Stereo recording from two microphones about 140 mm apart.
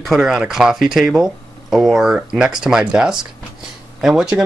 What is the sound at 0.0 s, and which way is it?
Speech, centre (ahead or behind).